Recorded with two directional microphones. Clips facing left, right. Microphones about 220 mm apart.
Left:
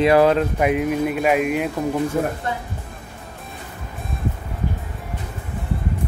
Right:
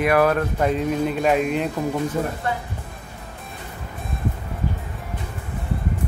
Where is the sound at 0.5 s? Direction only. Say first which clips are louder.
Left 2 dB; 10° left (ahead or behind).